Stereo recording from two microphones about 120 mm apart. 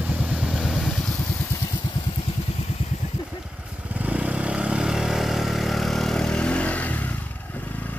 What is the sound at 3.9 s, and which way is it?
Vehicle, 10° right (ahead or behind).